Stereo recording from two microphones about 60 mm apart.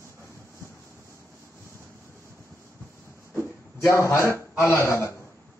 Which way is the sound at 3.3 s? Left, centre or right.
Left.